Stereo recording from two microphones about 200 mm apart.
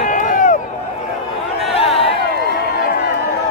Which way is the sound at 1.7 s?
30° left (ahead or behind).